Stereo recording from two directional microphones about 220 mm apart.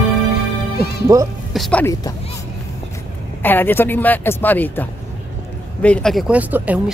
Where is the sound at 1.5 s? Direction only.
5° left (ahead or behind).